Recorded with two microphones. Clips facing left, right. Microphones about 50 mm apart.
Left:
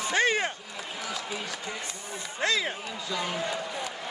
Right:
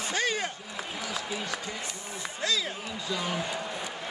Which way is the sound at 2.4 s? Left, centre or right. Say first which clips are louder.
Left 3 dB; left.